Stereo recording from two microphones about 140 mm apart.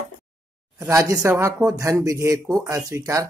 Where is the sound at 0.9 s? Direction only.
20° right (ahead or behind).